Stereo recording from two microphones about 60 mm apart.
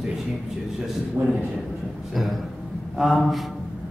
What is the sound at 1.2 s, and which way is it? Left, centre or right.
Speech, right.